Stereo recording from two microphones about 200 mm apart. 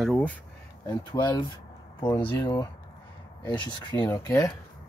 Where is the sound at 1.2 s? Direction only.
20° left (ahead or behind).